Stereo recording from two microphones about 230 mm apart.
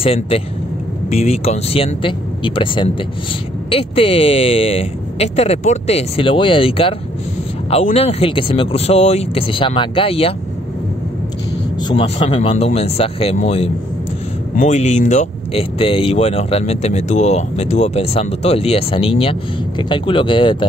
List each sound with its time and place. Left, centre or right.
0.0 s speech: left
11.9 s speech: left